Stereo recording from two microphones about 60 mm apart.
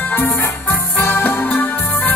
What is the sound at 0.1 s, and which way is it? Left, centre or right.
Music, left.